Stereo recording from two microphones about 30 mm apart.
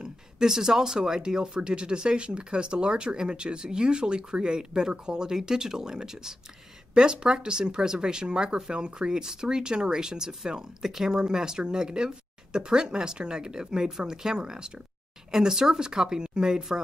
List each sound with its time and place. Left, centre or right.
0.0 s speech: centre